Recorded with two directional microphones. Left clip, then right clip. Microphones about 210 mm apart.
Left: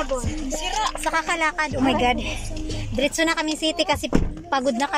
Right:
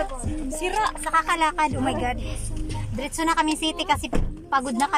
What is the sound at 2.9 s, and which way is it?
Speech, centre (ahead or behind).